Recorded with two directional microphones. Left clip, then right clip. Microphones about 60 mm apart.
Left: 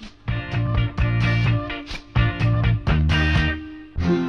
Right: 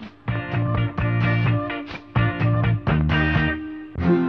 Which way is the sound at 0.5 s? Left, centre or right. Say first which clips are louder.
Right 2 dB; left.